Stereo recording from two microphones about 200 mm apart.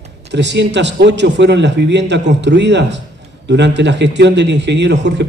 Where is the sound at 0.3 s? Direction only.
60° right (ahead or behind).